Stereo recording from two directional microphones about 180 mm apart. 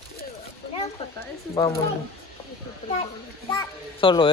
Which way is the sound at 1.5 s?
30° left (ahead or behind).